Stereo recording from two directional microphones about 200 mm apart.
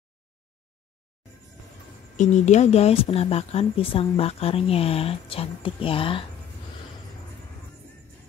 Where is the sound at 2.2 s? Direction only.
35° left (ahead or behind).